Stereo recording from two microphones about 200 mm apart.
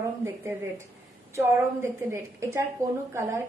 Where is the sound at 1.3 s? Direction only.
15° right (ahead or behind).